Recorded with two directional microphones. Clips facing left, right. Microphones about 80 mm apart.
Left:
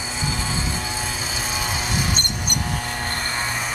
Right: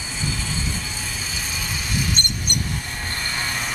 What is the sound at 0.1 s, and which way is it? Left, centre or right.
Vehicle, centre.